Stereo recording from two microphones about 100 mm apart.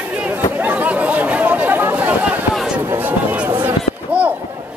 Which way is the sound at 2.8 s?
20° right (ahead or behind).